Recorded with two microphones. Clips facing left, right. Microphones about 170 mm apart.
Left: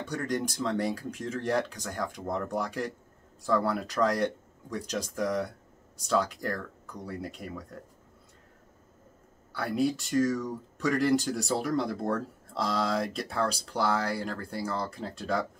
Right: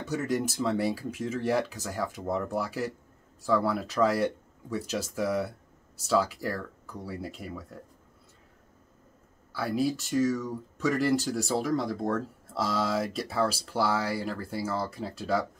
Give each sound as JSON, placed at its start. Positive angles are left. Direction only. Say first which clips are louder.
{"t": 0.0, "sound": "speech", "louder": "right 2 dB", "side_deg": -5}
{"t": 9.5, "sound": "speech", "louder": "even", "side_deg": 0}